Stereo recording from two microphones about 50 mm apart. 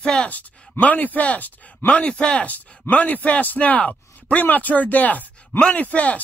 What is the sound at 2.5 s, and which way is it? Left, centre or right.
Speech, left.